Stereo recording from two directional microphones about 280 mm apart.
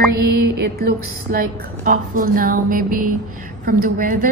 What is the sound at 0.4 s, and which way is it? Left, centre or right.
A woman's voice, right.